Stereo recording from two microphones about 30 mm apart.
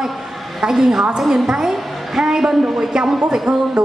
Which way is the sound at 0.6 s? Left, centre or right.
Centre.